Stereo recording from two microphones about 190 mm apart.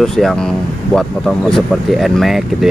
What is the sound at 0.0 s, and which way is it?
Speech, centre (ahead or behind).